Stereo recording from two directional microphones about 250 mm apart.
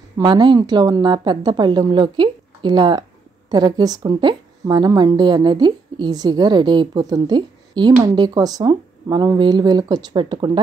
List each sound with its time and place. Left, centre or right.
0.2 s a woman's voice: centre